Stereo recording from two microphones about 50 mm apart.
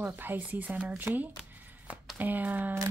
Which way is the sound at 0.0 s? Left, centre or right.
Right.